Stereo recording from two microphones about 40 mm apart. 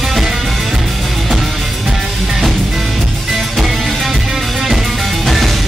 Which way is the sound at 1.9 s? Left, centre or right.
Centre.